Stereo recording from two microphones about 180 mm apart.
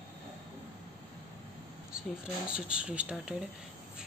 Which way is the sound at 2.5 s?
5° right (ahead or behind).